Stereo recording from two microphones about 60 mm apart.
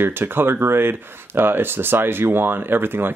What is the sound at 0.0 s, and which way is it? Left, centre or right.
Speech, right.